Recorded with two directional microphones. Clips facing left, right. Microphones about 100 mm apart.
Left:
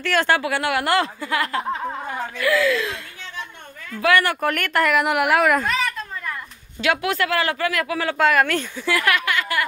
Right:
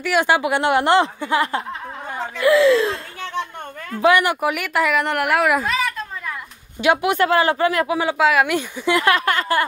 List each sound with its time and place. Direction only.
0.0 s speech: 15° right (ahead or behind); by 3.0 s 30° right (ahead or behind)
4.0 s speech: 15° right (ahead or behind)
6.8 s speech: 20° right (ahead or behind)
8.2 s speech: 5° right (ahead or behind); by 9.2 s 25° right (ahead or behind)
9.2 s speech: 35° right (ahead or behind)